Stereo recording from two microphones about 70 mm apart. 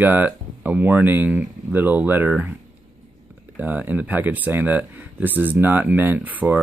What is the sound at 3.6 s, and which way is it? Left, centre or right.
Speech, right.